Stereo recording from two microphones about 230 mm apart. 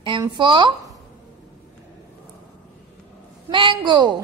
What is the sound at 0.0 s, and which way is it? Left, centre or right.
Speech, right.